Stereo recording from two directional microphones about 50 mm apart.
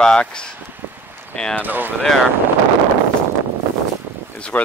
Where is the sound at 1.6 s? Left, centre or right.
Right.